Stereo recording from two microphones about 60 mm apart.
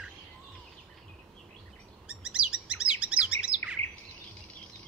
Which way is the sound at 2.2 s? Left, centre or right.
Centre.